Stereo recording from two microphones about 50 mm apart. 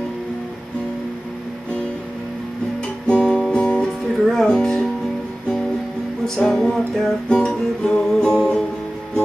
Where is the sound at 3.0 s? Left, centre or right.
Centre.